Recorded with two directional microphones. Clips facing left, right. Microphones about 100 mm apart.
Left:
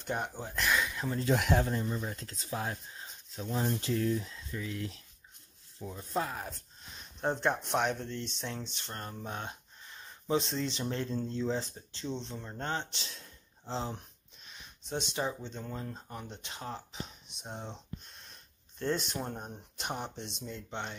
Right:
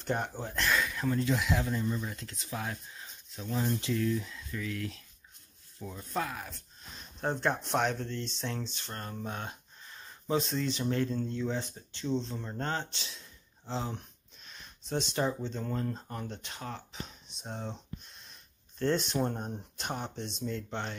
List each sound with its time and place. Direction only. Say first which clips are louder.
0.0 s speech: right 2 dB; 10° left (ahead or behind)
0.6 s a sound: right 1 dB; 15° left (ahead or behind)
1.3 s speech: left 2 dB; 55° left (ahead or behind)
1.6 s speech: even; 35° left (ahead or behind)
7.3 s speech: right 2 dB; 20° left (ahead or behind)
12.4 s speech: right 4 dB; 5° left (ahead or behind)
12.6 s speech: left 1 dB; 20° left (ahead or behind)
14.5 s speech: right 3 dB; 15° left (ahead or behind)
16.4 s speech: even; 25° left (ahead or behind)
17.4 s speech: right 3 dB; 15° left (ahead or behind)
18.8 s speech: right 4 dB; 10° left (ahead or behind)
19.8 s speech: even; 20° left (ahead or behind)